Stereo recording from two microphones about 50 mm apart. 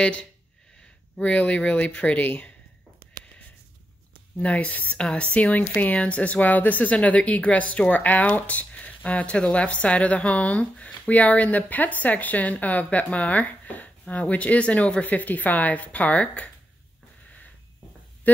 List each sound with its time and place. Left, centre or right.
0.0 s speech: centre
4.4 s speech: left
18.3 s speech: left